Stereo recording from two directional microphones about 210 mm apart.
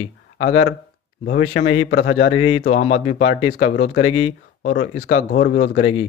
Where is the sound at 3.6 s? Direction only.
35° left (ahead or behind).